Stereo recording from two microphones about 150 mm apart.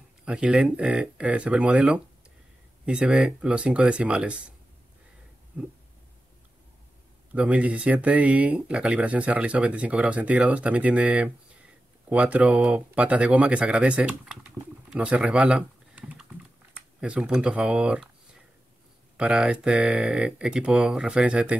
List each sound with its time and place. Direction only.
0.2 s speech: 5° right (ahead or behind)
7.3 s speech: 10° right (ahead or behind)
19.1 s speech: 5° right (ahead or behind)